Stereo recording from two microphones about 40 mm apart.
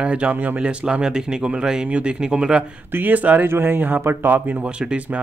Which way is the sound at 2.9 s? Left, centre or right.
Right.